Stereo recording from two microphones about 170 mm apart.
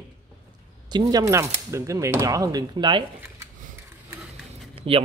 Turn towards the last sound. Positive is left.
turn(degrees=-5)  # may be behind; listen again after turning